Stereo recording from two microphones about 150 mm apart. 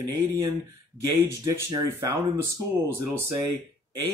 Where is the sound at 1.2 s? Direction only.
15° right (ahead or behind).